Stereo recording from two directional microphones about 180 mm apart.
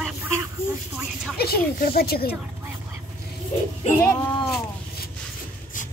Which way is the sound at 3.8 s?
40° left (ahead or behind).